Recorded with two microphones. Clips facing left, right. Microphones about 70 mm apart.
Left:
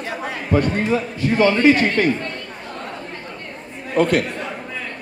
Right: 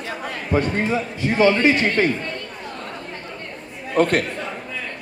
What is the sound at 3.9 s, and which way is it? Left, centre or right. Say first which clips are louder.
Speech: left 1 dB; right.